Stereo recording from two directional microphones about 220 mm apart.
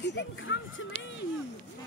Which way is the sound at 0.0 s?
50° left (ahead or behind).